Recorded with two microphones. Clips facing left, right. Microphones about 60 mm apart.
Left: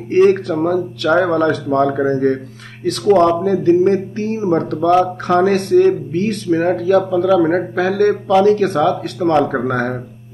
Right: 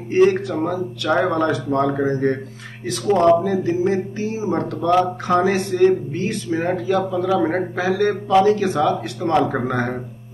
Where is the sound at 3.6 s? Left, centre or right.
Left.